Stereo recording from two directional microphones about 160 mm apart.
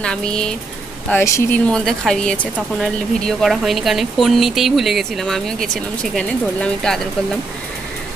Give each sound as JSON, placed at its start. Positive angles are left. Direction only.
{"t": 0.0, "sound": "speech", "side_deg": 5}
{"t": 1.7, "sound": "speech", "side_deg": 5}